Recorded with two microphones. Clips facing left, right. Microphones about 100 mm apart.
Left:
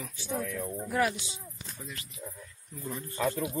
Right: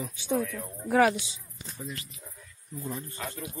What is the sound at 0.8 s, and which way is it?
Speech, 90° right.